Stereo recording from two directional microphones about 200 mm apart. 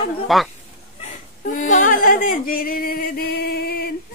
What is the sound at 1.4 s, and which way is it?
Singing, 40° left (ahead or behind).